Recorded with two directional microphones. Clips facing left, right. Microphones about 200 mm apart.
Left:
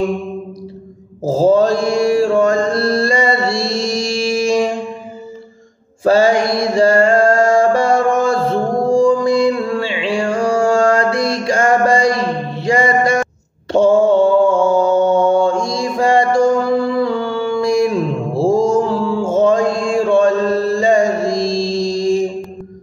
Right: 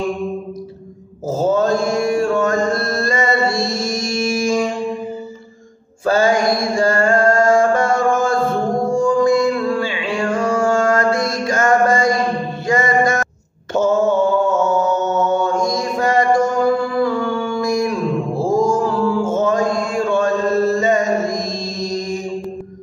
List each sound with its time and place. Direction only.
1.2 s mantra: 30° left (ahead or behind)
6.0 s mantra: 25° left (ahead or behind)
8.2 s music: 30° left (ahead or behind)
13.7 s mantra: 30° left (ahead or behind)
20.7 s music: 30° left (ahead or behind)